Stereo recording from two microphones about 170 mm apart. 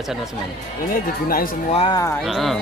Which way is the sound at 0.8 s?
55° left (ahead or behind).